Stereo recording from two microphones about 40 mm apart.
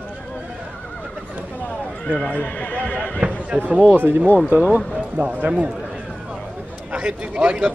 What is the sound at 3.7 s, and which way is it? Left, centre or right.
Speech, right.